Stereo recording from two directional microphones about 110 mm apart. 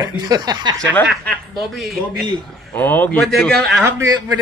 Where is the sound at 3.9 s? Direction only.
35° right (ahead or behind).